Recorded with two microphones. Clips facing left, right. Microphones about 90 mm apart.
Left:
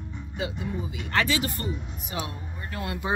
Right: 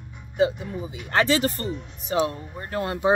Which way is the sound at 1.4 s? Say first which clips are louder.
Right 4 dB; 40° right (ahead or behind).